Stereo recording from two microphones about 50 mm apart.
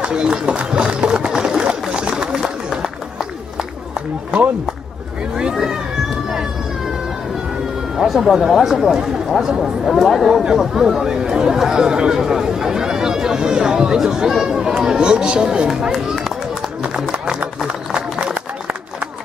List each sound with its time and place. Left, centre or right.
0.0 s run: centre
5.3 s cat: centre
8.0 s speech: centre
17.1 s a sound: right